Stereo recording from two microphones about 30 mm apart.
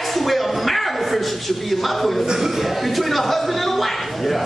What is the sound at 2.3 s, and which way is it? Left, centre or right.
Speech, centre.